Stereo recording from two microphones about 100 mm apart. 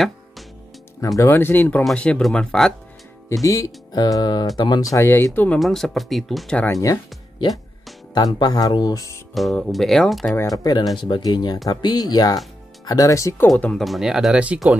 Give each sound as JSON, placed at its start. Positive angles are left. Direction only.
{"t": 1.0, "sound": "speech", "side_deg": 35}
{"t": 1.3, "sound": "speech", "side_deg": 20}
{"t": 3.4, "sound": "speech", "side_deg": 35}
{"t": 5.6, "sound": "speech", "side_deg": 0}
{"t": 6.7, "sound": "speech", "side_deg": 35}
{"t": 8.1, "sound": "speech", "side_deg": 40}
{"t": 9.3, "sound": "speech", "side_deg": 0}
{"t": 10.6, "sound": "speech", "side_deg": 40}
{"t": 13.6, "sound": "speech", "side_deg": 10}
{"t": 13.8, "sound": "speech", "side_deg": -5}